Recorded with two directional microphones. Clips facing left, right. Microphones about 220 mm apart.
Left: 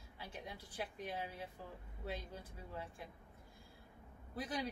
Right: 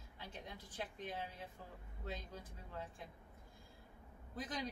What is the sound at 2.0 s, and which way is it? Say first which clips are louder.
Speech: left 2 dB; 10° left (ahead or behind).